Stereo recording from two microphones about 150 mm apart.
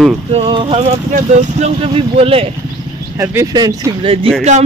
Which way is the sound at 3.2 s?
20° right (ahead or behind).